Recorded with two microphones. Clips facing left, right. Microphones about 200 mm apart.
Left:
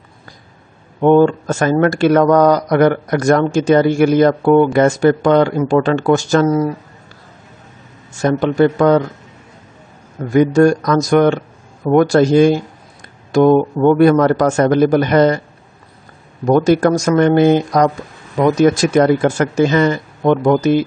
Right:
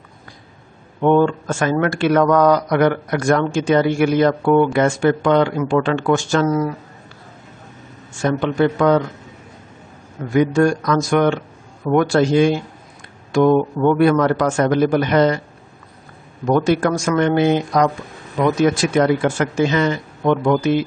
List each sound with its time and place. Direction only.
1.0 s speech: 35° left (ahead or behind)
8.1 s speech: 40° left (ahead or behind)
10.3 s speech: 40° left (ahead or behind)
16.4 s speech: 40° left (ahead or behind)